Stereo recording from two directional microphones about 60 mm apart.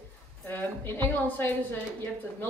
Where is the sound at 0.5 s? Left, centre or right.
Left.